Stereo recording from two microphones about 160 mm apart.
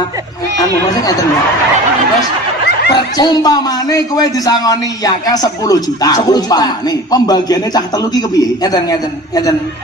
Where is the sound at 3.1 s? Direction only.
25° left (ahead or behind).